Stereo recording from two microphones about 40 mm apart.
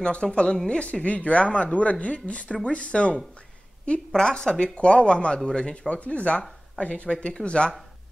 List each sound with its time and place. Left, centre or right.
0.0 s speech: left
4.1 s speech: centre
5.9 s speech: left
7.1 s speech: left